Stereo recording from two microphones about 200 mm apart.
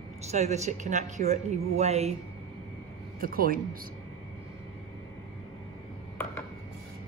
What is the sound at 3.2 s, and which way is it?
Speech, 45° right (ahead or behind).